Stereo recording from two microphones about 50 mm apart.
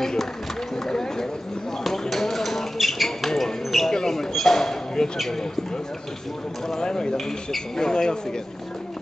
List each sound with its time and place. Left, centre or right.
0.0 s speech: centre
0.8 s run: centre
1.9 s a sound: centre
6.7 s speech: centre